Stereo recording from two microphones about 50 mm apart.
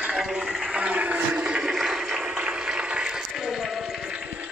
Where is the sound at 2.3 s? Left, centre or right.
Centre.